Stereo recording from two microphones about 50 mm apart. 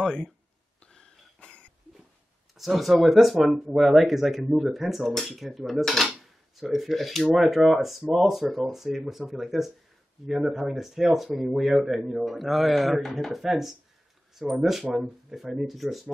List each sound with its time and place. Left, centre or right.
0.0 s speech: centre
0.9 s cough: centre
2.5 s speech: centre